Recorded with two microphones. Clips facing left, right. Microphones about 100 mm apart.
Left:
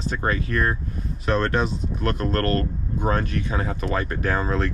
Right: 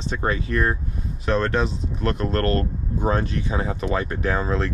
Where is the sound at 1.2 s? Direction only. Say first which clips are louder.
Even; centre (ahead or behind).